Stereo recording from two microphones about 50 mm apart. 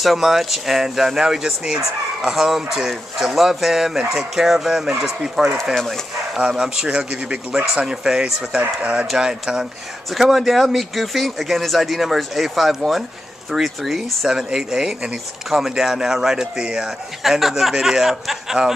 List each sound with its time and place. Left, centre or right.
0.0 s speech: centre
8.5 s speech: right
9.1 s speech: centre